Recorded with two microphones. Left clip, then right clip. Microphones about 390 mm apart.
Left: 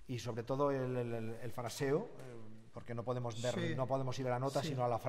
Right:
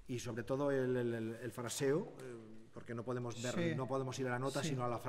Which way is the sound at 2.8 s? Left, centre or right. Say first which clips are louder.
Left 2 dB; left.